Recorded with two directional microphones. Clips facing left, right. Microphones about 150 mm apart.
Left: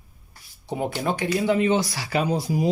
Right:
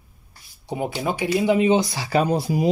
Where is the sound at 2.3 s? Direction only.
70° right (ahead or behind).